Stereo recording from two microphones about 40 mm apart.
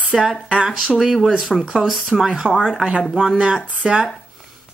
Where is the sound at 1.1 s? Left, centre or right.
Centre.